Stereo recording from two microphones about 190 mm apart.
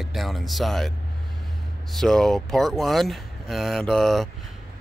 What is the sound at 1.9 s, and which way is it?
Speech, centre (ahead or behind).